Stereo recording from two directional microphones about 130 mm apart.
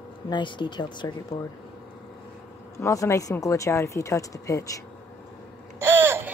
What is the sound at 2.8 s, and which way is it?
Speech, 25° left (ahead or behind).